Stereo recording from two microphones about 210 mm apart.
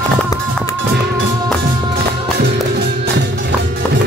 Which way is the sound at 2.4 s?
55° right (ahead or behind).